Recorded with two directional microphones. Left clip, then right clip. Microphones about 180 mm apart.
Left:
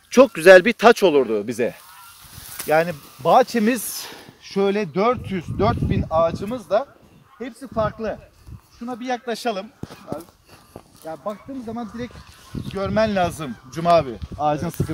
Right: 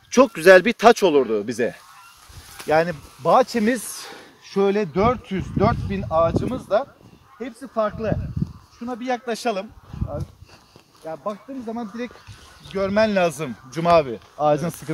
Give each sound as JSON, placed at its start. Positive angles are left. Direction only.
{"t": 0.1, "sound": "speech", "side_deg": 30}
{"t": 4.1, "sound": "speech", "side_deg": 15}
{"t": 11.1, "sound": "speech", "side_deg": -15}